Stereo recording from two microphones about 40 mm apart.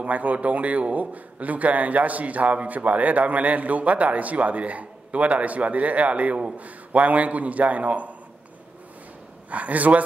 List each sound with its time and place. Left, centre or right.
0.0 s a man's voice: right
9.5 s a man's voice: right